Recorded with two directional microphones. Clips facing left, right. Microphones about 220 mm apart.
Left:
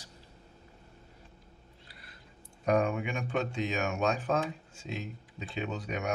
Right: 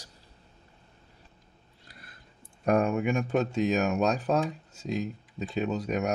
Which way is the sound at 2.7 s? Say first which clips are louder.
Right 4 dB; 45° right (ahead or behind).